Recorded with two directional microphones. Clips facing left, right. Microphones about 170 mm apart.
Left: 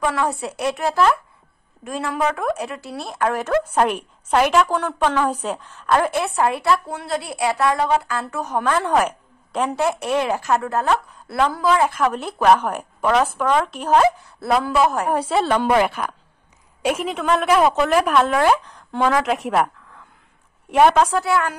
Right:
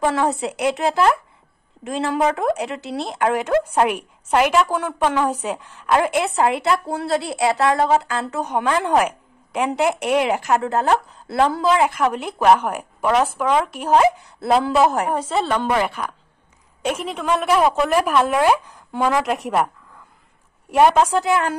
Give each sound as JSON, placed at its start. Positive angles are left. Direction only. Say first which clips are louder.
{"t": 0.0, "sound": "speech", "louder": "right 2 dB", "side_deg": -25}
{"t": 15.1, "sound": "a woman's voice", "louder": "left 2 dB", "side_deg": 10}
{"t": 20.7, "sound": "a woman's voice", "louder": "even", "side_deg": -5}